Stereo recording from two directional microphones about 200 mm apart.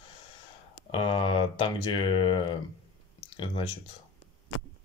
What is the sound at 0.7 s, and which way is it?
Speech, 25° left (ahead or behind).